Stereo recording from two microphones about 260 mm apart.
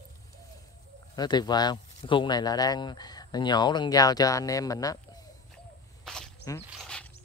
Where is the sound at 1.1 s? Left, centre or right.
Centre.